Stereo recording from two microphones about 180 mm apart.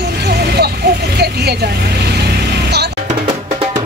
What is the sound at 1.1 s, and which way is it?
Speech, 65° right (ahead or behind).